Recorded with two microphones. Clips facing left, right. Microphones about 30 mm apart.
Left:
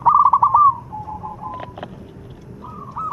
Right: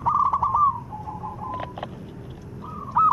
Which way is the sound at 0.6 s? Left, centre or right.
Centre.